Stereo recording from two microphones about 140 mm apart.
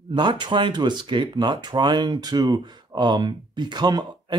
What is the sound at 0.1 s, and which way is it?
Speech, 35° right (ahead or behind).